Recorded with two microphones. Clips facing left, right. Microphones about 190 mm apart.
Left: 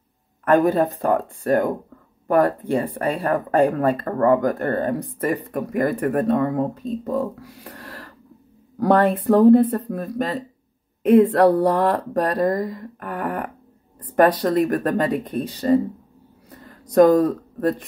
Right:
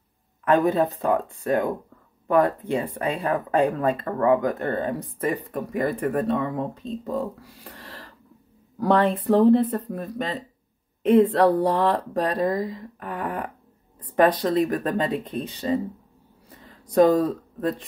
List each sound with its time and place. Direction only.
0.5 s speech: 50° left (ahead or behind)
2.7 s speech: 50° left (ahead or behind)
11.5 s speech: 45° left (ahead or behind)
16.9 s speech: 45° left (ahead or behind)